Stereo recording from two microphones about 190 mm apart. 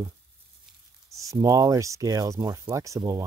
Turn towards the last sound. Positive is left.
turn(degrees=-15)  # may be behind; listen again after turning